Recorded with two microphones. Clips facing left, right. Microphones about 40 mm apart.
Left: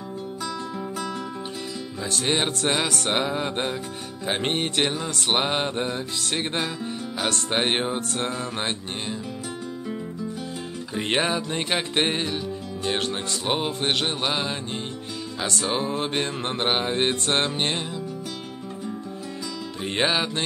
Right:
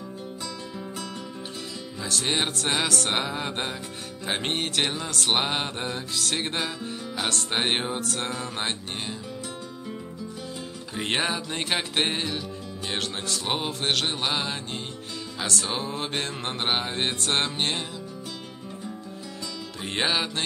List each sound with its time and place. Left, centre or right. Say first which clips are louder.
2.1 s music: left 2 dB; centre
8.0 s music: left 2 dB; left
8.3 s mantra: left 2 dB; centre
11.0 s music: left 3 dB; centre
13.3 s mantra: left 1 dB; centre
16.0 s mantra: left 4 dB; centre
19.8 s mantra: left 3 dB; centre